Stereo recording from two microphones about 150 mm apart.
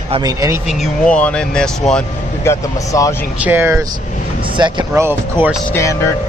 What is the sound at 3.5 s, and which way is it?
Speech, 15° right (ahead or behind).